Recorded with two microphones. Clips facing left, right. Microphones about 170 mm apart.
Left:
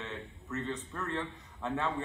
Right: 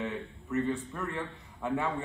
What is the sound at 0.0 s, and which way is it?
A man's voice, 15° right (ahead or behind).